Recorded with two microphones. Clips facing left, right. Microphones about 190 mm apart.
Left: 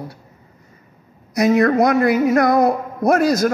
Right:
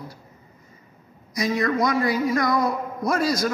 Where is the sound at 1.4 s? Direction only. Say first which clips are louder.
Left 8 dB; 60° left (ahead or behind).